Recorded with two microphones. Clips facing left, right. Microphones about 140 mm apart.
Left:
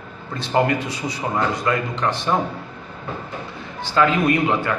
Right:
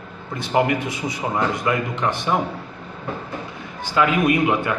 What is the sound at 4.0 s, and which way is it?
Speech, 10° right (ahead or behind).